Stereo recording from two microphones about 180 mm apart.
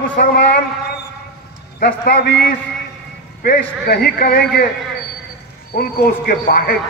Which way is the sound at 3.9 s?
55° left (ahead or behind).